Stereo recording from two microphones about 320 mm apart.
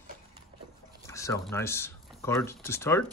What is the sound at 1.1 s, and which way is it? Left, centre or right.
Speech, centre.